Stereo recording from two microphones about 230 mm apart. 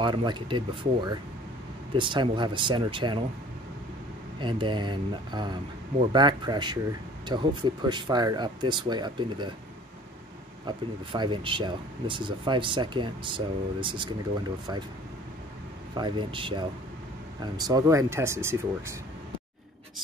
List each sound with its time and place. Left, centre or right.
0.0 s speech: centre
4.4 s speech: right
11.1 s speech: right
16.0 s speech: right